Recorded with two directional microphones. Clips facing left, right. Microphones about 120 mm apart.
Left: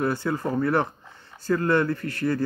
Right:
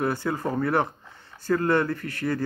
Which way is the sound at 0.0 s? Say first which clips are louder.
Left 1 dB; 25° right (ahead or behind).